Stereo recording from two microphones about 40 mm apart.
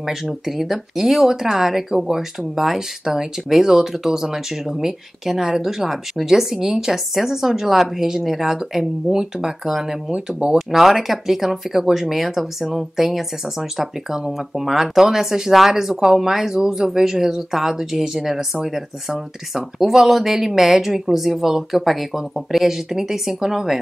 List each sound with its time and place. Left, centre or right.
0.0 s speech: centre
10.1 s speech: right
10.7 s speech: centre